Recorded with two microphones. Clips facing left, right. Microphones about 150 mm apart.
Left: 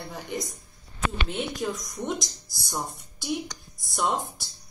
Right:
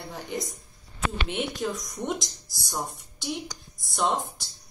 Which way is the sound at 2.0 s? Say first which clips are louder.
Even; centre (ahead or behind).